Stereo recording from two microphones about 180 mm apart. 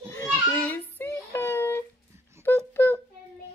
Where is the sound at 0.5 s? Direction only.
10° left (ahead or behind).